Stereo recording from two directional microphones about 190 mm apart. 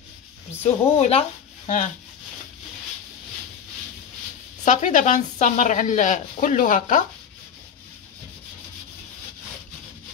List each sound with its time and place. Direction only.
0.6 s speech: 35° left (ahead or behind)
4.6 s speech: 45° left (ahead or behind)